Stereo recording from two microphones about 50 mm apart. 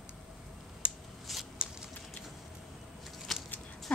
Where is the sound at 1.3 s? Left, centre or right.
Centre.